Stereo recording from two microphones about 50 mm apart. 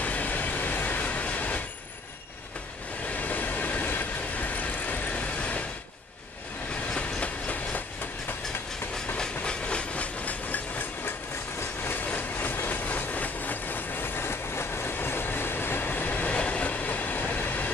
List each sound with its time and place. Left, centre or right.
0.0 s train: left
3.2 s train: left
7.0 s train: left
9.1 s train: centre; by 11.1 s left
11.8 s vehicle: left
12.2 s train: left
12.8 s train: left